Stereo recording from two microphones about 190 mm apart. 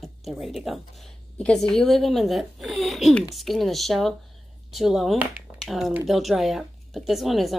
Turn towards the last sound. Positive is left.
turn(degrees=0)  # may be behind; listen again after turning